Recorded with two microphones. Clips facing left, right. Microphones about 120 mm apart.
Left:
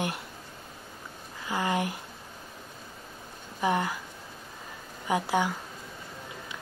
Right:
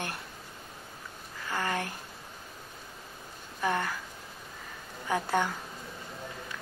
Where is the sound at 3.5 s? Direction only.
15° left (ahead or behind).